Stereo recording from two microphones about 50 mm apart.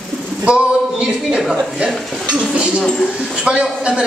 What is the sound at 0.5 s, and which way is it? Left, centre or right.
A man's voice, right.